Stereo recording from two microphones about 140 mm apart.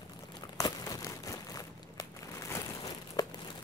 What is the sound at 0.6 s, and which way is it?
Crumpling, 25° left (ahead or behind).